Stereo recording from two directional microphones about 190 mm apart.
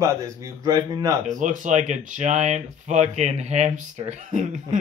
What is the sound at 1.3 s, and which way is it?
Speech, 40° right (ahead or behind).